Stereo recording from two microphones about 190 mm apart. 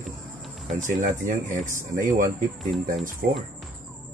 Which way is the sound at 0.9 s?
40° right (ahead or behind).